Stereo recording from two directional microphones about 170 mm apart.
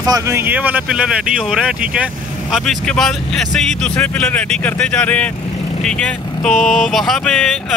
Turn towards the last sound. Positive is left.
turn(degrees=5)  # may be behind; listen again after turning